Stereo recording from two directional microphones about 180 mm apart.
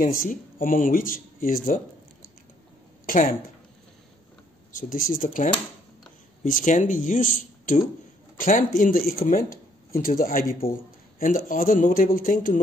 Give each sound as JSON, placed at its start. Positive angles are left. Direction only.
{"t": 0.0, "sound": "speech", "side_deg": 50}
{"t": 3.1, "sound": "speech", "side_deg": 50}
{"t": 4.7, "sound": "speech", "side_deg": 50}